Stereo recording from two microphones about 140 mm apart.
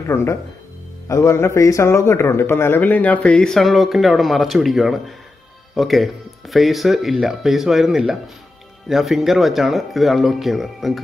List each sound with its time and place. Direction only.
0.0 s a man's voice: 20° left (ahead or behind); by 11.0 s centre (ahead or behind)